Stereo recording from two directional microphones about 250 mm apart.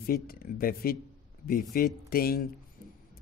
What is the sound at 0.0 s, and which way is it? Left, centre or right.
Speech, left.